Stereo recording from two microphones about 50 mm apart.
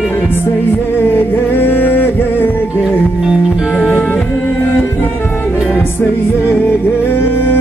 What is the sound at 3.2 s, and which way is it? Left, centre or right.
Music, centre.